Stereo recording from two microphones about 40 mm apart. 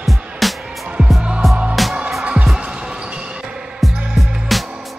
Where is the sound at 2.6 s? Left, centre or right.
Right.